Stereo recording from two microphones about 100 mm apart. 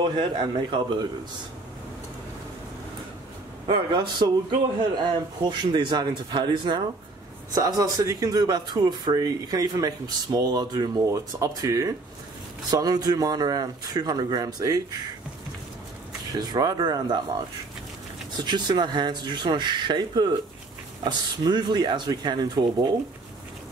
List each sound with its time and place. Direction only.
0.0 s speech: 55° right (ahead or behind)
3.6 s a man's voice: 55° right (ahead or behind)
7.5 s speech: 35° right (ahead or behind)
11.1 s speech: 30° right (ahead or behind)
16.3 s speech: 40° right (ahead or behind)
18.4 s speech: 45° right (ahead or behind)